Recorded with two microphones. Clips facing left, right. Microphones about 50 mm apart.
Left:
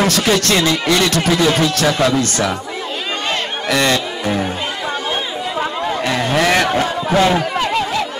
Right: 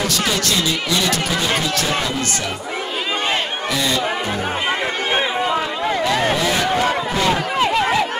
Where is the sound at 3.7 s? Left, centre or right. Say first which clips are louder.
Left 6 dB; left.